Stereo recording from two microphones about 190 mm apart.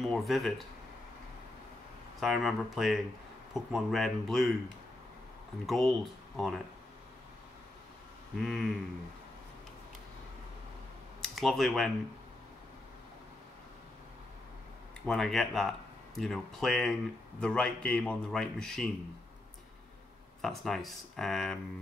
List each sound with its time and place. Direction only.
0.0 s speech: centre (ahead or behind)
2.1 s speech: centre (ahead or behind)
5.7 s speech: centre (ahead or behind)
8.4 s speech: centre (ahead or behind)
11.1 s speech: centre (ahead or behind)
15.0 s speech: centre (ahead or behind)
20.4 s speech: centre (ahead or behind)